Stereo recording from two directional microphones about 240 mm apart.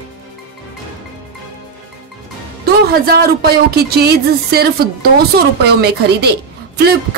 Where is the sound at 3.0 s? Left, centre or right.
Right.